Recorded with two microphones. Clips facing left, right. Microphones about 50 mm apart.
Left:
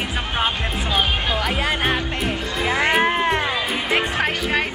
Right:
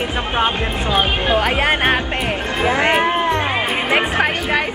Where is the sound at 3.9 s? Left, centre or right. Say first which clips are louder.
Right 4 dB; right.